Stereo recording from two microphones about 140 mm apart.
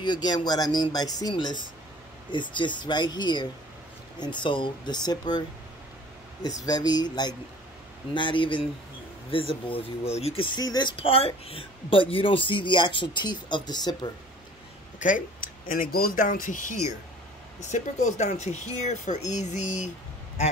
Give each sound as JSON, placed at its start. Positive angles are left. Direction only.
{"t": 0.0, "sound": "speech", "side_deg": 30}
{"t": 6.4, "sound": "speech", "side_deg": 25}
{"t": 11.0, "sound": "speech", "side_deg": 40}
{"t": 15.0, "sound": "speech", "side_deg": 70}